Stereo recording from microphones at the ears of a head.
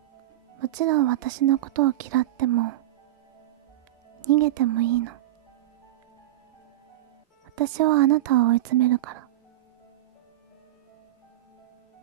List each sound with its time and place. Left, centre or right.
0.6 s speech: right
4.2 s speech: right
7.5 s speech: right